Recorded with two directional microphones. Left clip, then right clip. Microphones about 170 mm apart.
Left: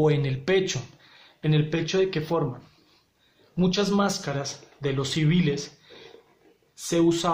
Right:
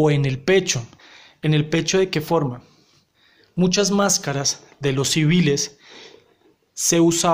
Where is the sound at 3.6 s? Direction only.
35° right (ahead or behind).